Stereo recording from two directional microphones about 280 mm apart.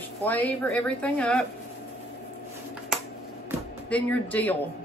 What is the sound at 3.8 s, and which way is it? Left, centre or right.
Speech, centre.